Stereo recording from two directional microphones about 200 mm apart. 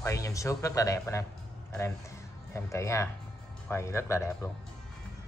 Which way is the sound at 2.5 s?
15° left (ahead or behind).